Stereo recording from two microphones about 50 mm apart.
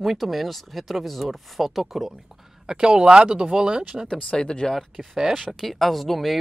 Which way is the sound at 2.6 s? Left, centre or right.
Centre.